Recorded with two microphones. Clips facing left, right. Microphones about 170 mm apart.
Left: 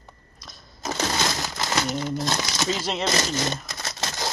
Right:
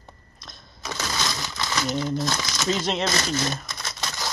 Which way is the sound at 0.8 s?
35° left (ahead or behind).